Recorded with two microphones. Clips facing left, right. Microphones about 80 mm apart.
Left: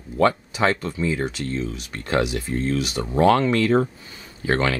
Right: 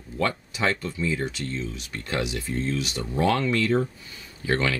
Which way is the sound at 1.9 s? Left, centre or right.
Left.